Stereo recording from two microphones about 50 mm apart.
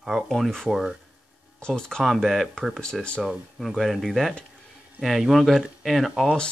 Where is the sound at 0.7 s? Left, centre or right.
Centre.